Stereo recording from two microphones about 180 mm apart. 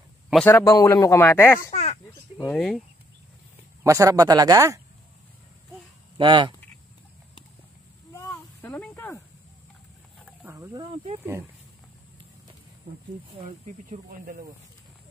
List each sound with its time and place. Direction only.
0.5 s speech: 15° left (ahead or behind)
1.7 s a sound: 35° left (ahead or behind)
2.3 s speech: 5° left (ahead or behind)
3.8 s speech: 15° right (ahead or behind)
6.1 s speech: 25° right (ahead or behind)
8.1 s a sound: 15° left (ahead or behind)
10.4 s speech: 15° right (ahead or behind)
13.7 s speech: 45° right (ahead or behind)